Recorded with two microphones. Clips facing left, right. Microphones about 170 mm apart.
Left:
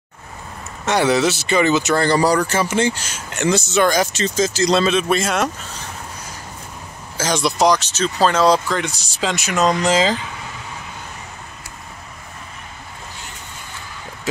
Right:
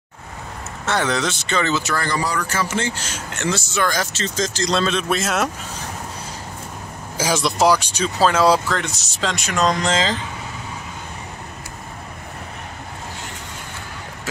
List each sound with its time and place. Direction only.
0.8 s speech: 10° left (ahead or behind)
2.0 s speech: 35° left (ahead or behind)
2.5 s speech: 15° left (ahead or behind); by 5.5 s 5° right (ahead or behind)
7.2 s speech: 5° right (ahead or behind)